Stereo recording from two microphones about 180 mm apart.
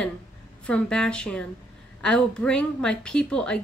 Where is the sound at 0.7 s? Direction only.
5° left (ahead or behind).